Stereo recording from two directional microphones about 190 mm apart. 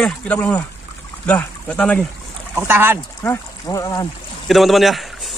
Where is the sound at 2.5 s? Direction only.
10° right (ahead or behind).